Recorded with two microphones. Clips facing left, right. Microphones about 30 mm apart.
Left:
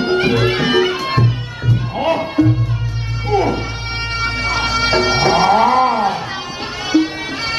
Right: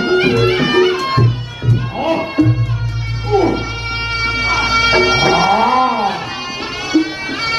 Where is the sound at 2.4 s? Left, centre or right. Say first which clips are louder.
Even; centre.